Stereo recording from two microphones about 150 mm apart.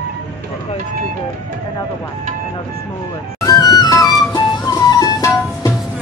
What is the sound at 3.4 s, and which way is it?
Music, 25° left (ahead or behind).